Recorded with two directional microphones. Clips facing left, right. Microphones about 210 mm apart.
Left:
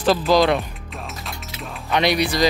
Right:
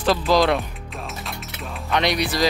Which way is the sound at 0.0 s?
Centre (ahead or behind).